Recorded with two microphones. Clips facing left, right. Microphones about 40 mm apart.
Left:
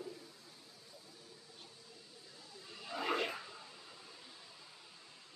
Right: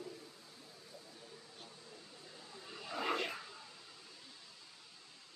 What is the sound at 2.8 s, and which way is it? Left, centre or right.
Wild animals, centre.